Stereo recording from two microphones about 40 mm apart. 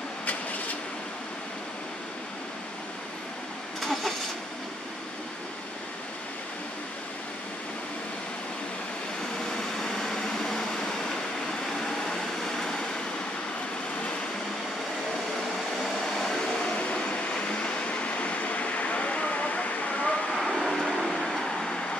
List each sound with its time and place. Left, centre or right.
3.8 s vehicle: centre
9.5 s vehicle: centre
12.1 s a sound: centre
15.8 s vehicle: centre; by 20.2 s left
20.3 s vehicle: centre
21.5 s vehicle: centre